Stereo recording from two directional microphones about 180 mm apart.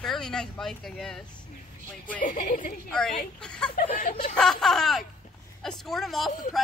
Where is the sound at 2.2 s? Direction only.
50° left (ahead or behind).